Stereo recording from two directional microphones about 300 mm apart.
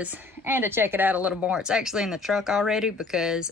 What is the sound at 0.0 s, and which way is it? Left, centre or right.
A woman's voice, centre.